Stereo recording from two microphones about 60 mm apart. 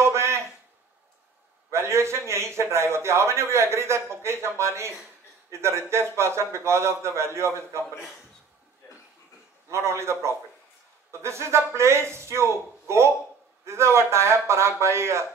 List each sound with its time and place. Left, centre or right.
0.0 s a sound: right
1.7 s a man's voice: right
9.7 s a man's voice: right